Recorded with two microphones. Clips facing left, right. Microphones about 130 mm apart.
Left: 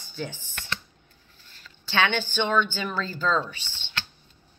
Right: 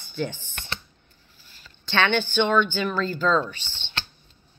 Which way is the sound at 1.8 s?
10° left (ahead or behind).